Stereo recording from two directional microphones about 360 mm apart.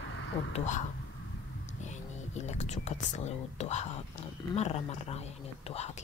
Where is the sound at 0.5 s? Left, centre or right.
Centre.